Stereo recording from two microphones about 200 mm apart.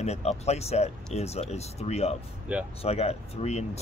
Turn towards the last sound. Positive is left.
turn(degrees=30)  # may be behind; listen again after turning